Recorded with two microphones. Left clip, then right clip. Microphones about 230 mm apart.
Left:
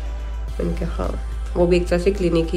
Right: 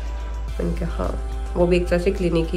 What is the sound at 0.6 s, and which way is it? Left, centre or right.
Speech, centre.